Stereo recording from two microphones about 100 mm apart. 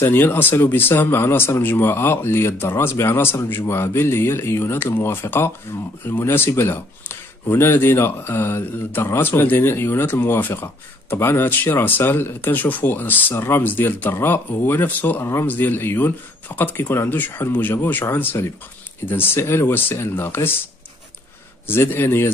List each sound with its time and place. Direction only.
0.0 s speech: 20° left (ahead or behind)
21.6 s speech: 20° left (ahead or behind)